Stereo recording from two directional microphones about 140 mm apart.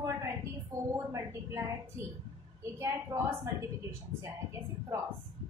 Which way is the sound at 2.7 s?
20° right (ahead or behind).